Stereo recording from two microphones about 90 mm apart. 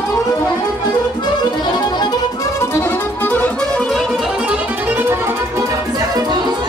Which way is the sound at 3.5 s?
5° left (ahead or behind).